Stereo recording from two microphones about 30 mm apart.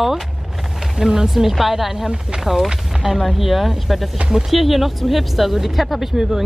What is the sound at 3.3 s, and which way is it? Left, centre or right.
Speech, centre.